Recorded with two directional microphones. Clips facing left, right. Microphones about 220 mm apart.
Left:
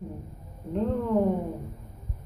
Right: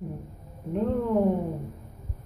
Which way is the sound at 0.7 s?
15° right (ahead or behind).